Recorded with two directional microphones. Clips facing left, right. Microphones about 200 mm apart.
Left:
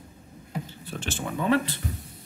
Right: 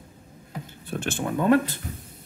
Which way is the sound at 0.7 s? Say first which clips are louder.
Right 4 dB; 55° right (ahead or behind).